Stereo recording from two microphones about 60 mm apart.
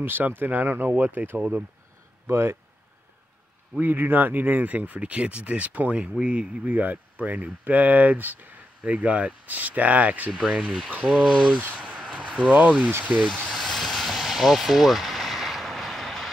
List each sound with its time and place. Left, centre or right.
0.0 s speech: right
3.8 s speech: right
11.7 s a sound: right
12.2 s speech: right
13.5 s vehicle: centre